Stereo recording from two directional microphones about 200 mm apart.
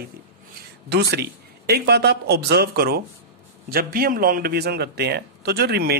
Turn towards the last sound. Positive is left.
turn(degrees=-55)  # may be behind; listen again after turning